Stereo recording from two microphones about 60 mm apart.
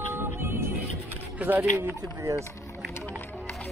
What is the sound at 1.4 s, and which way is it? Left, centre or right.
Speech, right.